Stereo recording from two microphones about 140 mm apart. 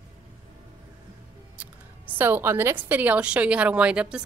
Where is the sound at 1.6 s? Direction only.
10° right (ahead or behind).